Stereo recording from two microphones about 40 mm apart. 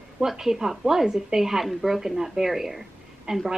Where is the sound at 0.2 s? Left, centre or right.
Centre.